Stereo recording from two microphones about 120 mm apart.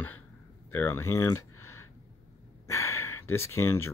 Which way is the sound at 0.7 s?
20° left (ahead or behind).